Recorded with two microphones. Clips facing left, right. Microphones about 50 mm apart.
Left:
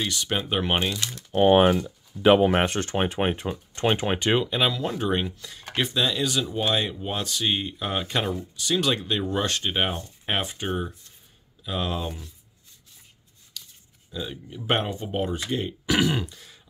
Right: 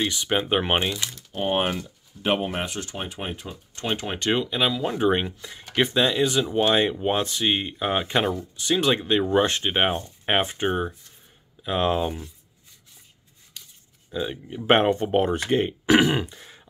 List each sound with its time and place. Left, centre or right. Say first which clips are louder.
0.0 s speech: right 3 dB; centre
1.3 s speech: left 8 dB; left
2.5 s speech: left 7 dB; left
4.3 s speech: right 1 dB; centre
4.8 s speech: right 4 dB; centre
13.5 s grunt: left 2 dB; right
14.1 s speech: right 5 dB; right
14.7 s speech: right 7 dB; right